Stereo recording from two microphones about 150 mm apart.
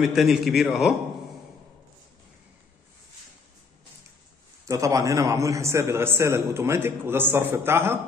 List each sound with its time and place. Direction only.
0.1 s a man's voice: centre (ahead or behind)
4.6 s a man's voice: 20° right (ahead or behind)